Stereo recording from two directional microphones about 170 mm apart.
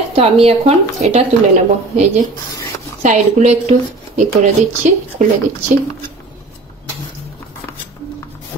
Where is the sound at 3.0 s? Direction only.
45° right (ahead or behind).